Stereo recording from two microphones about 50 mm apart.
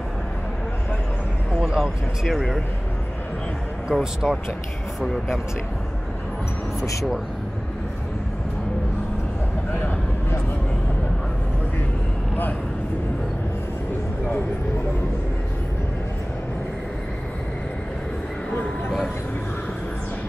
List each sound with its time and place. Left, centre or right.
1.5 s speech: centre
3.9 s speech: centre
6.8 s speech: left